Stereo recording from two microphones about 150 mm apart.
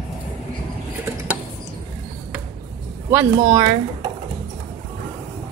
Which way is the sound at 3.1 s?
20° right (ahead or behind).